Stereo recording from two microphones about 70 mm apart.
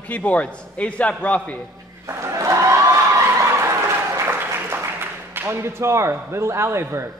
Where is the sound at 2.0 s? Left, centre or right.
Right.